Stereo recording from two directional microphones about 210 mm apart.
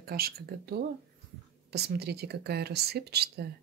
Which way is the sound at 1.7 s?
50° right (ahead or behind).